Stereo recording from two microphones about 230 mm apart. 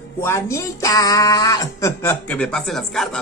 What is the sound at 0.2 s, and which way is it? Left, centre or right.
Speech, centre.